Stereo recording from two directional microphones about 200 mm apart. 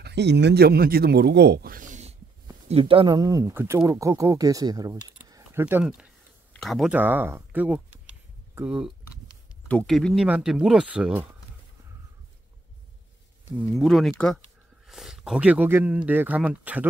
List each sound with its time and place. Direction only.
0.0 s speech: 60° right (ahead or behind); by 7.8 s 10° right (ahead or behind)
8.5 s a sound: 5° right (ahead or behind)
9.7 s speech: 5° left (ahead or behind)
13.6 s speech: centre (ahead or behind)